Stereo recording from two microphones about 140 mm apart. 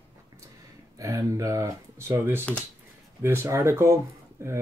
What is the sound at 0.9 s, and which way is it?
Speech, 25° right (ahead or behind).